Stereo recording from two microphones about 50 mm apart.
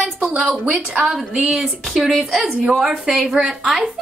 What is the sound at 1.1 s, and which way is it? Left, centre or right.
A woman's voice, centre.